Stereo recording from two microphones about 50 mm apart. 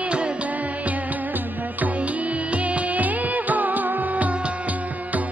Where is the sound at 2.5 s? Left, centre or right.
Right.